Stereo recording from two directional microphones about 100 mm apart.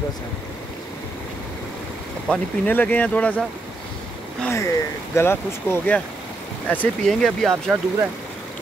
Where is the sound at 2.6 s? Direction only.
15° left (ahead or behind).